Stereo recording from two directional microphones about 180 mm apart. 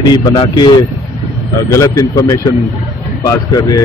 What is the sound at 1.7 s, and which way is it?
Speech, 15° left (ahead or behind).